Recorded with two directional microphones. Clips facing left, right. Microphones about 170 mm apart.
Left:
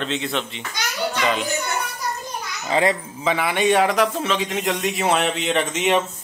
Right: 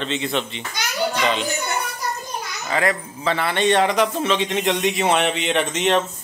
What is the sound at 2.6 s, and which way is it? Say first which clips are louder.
Speech: left 2 dB; 25° left (ahead or behind).